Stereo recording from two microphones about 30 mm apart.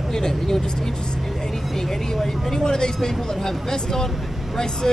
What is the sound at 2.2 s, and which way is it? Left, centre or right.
Speech, centre.